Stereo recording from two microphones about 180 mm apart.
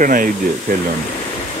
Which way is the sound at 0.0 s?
50° right (ahead or behind).